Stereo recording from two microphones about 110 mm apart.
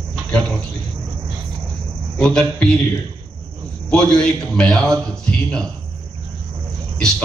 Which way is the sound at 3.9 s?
10° left (ahead or behind).